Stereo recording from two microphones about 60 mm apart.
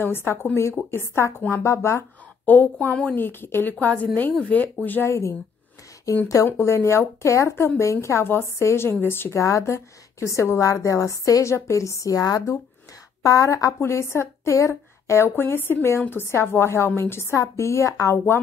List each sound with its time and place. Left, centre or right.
0.0 s a woman's voice: left
2.4 s a woman's voice: left
3.8 s speech: left
5.0 s a woman's voice: left
6.4 s a woman's voice: left
9.4 s a woman's voice: left
13.2 s a woman's voice: left
13.7 s a woman's voice: left